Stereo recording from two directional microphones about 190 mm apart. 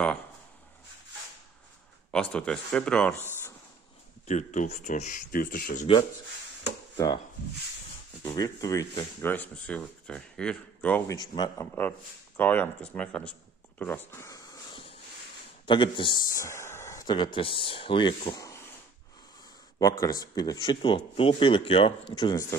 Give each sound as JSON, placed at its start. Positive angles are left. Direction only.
{"t": 2.0, "sound": "speech", "side_deg": 5}
{"t": 4.3, "sound": "speech", "side_deg": 40}
{"t": 8.2, "sound": "speech", "side_deg": 20}
{"t": 11.1, "sound": "speech", "side_deg": 20}
{"t": 11.6, "sound": "speech", "side_deg": 10}
{"t": 19.8, "sound": "speech", "side_deg": 20}